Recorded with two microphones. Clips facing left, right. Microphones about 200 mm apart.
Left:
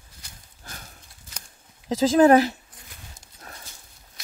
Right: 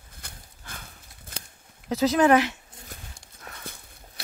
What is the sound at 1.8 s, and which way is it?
Speech, 35° left (ahead or behind).